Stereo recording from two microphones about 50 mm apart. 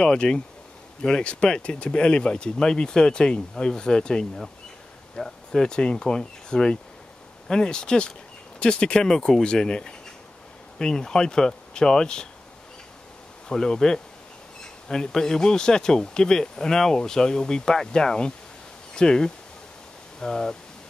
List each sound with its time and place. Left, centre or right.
0.0 s speech: centre
13.5 s speech: centre